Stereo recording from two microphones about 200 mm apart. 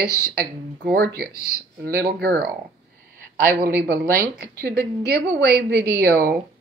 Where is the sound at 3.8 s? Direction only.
50° right (ahead or behind).